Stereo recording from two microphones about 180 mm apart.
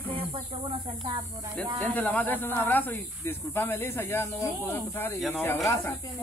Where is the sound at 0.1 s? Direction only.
30° right (ahead or behind).